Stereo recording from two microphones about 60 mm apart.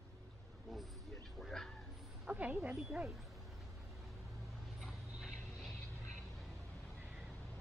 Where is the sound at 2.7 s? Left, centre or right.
Centre.